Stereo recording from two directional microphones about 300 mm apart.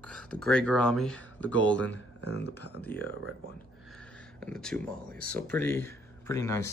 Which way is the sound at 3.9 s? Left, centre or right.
Centre.